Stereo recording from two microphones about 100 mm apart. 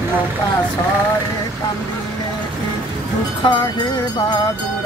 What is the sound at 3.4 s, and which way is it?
Music, 45° left (ahead or behind).